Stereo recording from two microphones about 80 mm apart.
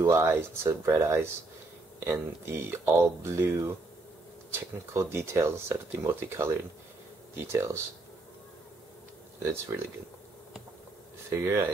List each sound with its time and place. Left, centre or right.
0.1 s speech: right
4.5 s speech: right
9.4 s speech: right
11.2 s speech: right